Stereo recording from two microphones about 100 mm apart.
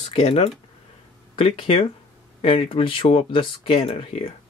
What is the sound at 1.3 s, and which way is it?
Speech, 65° left (ahead or behind).